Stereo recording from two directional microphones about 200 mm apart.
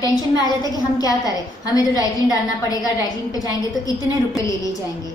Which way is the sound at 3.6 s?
15° left (ahead or behind).